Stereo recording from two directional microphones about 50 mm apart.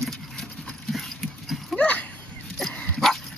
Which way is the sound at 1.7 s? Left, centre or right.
Left.